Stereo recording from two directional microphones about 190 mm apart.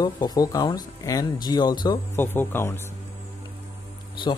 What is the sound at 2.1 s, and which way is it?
Speech, 10° left (ahead or behind).